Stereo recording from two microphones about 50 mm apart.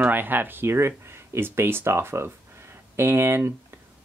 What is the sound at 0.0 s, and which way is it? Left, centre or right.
Speech, right.